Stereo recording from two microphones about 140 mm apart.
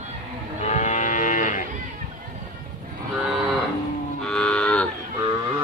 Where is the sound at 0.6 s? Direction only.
65° left (ahead or behind).